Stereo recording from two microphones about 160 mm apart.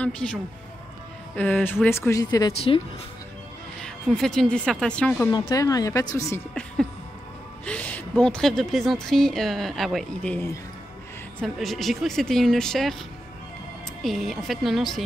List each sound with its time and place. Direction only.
0.0 s speech: 5° left (ahead or behind)
3.8 s a woman's voice: 5° left (ahead or behind)
5.5 s speech: 20° left (ahead or behind)
7.6 s a woman's voice: 10° left (ahead or behind)
14.0 s a woman's voice: centre (ahead or behind)